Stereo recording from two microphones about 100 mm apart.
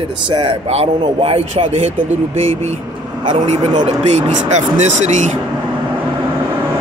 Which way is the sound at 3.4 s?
90° right.